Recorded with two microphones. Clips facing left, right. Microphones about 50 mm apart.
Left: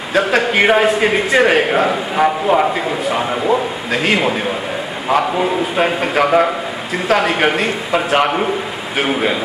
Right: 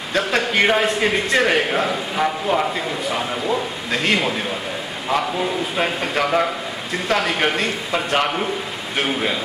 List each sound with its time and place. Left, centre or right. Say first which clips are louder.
0.1 s a man's voice: left 5 dB; centre